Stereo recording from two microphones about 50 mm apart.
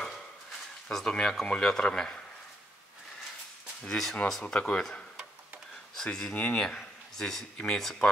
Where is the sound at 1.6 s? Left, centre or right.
Centre.